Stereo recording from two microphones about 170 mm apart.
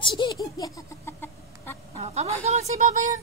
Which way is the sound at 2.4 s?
40° right (ahead or behind).